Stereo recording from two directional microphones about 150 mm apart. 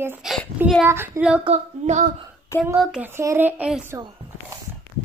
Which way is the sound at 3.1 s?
15° right (ahead or behind).